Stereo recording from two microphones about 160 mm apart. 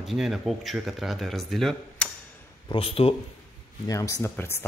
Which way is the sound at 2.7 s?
35° left (ahead or behind).